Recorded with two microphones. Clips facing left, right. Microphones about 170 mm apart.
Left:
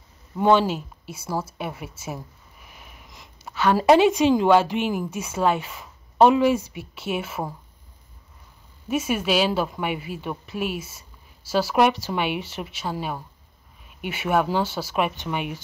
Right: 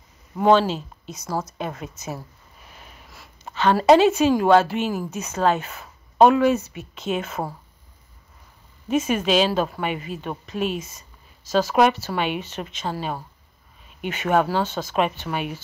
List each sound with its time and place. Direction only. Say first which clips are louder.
0.6 s a woman's voice: right 1 dB; 10° left (ahead or behind)
2.6 s sniff: right 1 dB; 15° left (ahead or behind)
3.5 s a woman's voice: right 1 dB; 10° left (ahead or behind)
8.8 s a woman's voice: right 2 dB; 10° left (ahead or behind)